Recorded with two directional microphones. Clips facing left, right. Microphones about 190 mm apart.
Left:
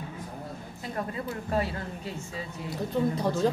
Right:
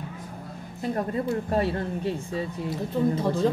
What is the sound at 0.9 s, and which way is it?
A woman's voice, 35° right (ahead or behind).